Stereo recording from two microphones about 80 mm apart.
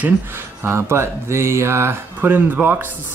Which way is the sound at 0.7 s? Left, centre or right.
Right.